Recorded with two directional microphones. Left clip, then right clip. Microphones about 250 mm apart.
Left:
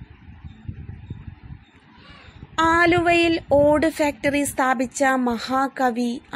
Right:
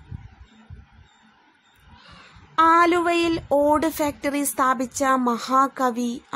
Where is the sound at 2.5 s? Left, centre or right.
Centre.